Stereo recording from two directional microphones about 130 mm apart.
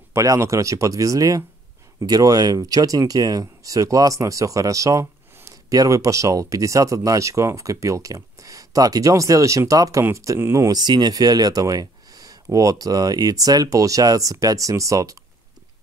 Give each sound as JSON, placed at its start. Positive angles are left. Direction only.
{"t": 0.1, "sound": "speech", "side_deg": -25}